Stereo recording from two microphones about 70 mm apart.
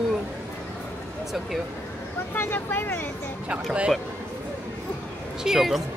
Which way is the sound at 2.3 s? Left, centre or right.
Left.